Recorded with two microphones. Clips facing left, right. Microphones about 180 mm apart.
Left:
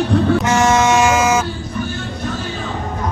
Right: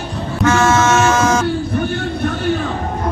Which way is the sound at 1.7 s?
60° right (ahead or behind).